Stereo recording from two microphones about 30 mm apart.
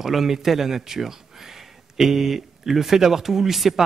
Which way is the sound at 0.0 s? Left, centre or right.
Centre.